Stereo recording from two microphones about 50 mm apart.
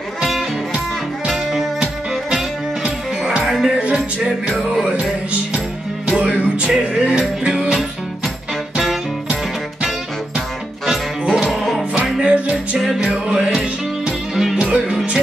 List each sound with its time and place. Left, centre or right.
0.2 s music: centre
2.3 s music: centre
4.6 s music: centre
6.0 s music: centre
10.9 s music: centre
12.2 s music: centre
14.6 s music: centre